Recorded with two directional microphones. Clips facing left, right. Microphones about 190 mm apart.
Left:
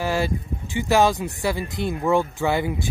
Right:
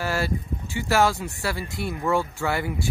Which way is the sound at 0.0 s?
15° left (ahead or behind).